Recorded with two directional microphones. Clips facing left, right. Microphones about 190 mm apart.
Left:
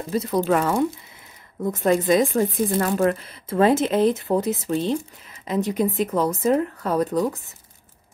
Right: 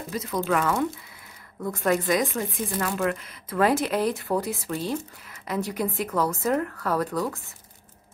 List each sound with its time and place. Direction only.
0.1 s speech: 30° left (ahead or behind)